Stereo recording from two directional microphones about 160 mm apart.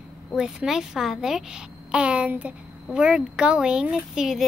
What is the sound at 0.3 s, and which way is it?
A woman's voice, 5° right (ahead or behind).